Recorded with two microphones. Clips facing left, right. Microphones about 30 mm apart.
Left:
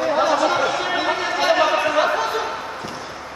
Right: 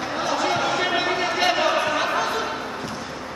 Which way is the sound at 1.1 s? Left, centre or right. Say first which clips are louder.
Left 2 dB; centre.